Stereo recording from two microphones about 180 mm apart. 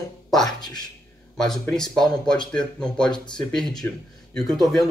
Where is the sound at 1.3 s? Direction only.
Centre (ahead or behind).